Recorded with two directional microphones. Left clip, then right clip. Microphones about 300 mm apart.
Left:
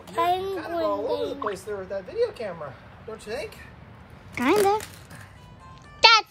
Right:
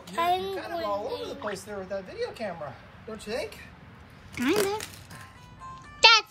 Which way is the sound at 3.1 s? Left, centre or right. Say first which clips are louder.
Even; centre.